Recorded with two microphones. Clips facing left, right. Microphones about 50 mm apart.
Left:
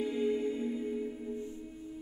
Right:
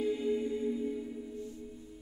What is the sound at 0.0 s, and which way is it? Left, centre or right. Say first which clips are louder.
Music: even; centre.